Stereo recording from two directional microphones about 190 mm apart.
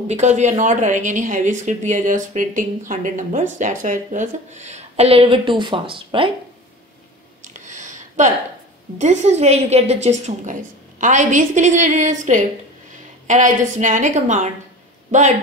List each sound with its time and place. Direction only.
0.1 s a woman's voice: 35° right (ahead or behind)
7.4 s a sound: 40° right (ahead or behind)
8.9 s a woman's voice: 40° right (ahead or behind)